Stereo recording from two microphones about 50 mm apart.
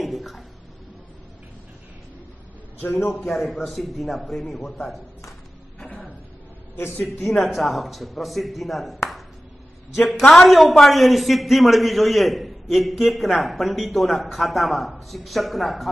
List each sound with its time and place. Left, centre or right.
0.0 s a sound: centre
2.8 s a man's voice: left
3.2 s a man's voice: centre
6.8 s speech: left
7.3 s a man's voice: centre
9.9 s a man's voice: centre